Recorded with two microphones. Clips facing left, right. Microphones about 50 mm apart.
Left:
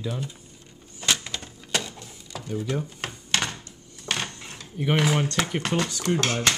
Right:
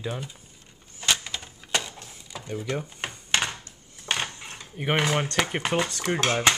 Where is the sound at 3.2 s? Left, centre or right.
Centre.